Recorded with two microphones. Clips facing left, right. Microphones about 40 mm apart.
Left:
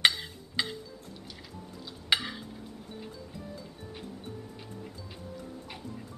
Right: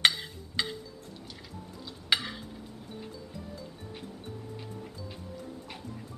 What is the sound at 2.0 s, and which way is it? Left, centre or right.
Stir, centre.